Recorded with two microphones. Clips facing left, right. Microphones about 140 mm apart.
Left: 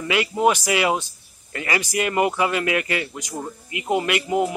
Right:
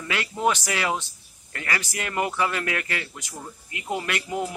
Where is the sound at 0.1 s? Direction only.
10° left (ahead or behind).